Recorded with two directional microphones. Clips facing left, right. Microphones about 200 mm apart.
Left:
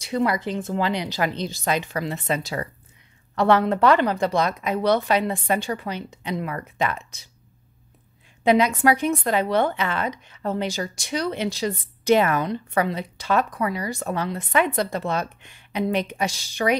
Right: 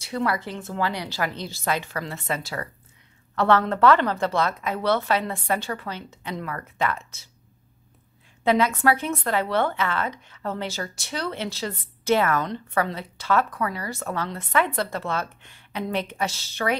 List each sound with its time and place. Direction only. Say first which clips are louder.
0.0 s speech: left 3 dB; 15° left (ahead or behind)
8.5 s speech: left 2 dB; 15° left (ahead or behind)